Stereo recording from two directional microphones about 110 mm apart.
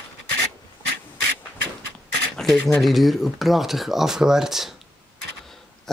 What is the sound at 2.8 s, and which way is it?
Speech, centre (ahead or behind).